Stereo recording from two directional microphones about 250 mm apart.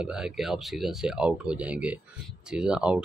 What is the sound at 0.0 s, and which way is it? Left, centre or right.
Speech, centre.